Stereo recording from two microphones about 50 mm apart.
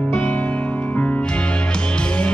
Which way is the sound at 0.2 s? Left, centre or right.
Left.